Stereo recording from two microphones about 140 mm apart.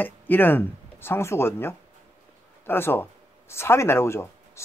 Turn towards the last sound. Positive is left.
turn(degrees=20)  # may be behind; listen again after turning